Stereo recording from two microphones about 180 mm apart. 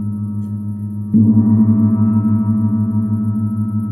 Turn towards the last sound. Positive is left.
turn(degrees=20)  # may be behind; listen again after turning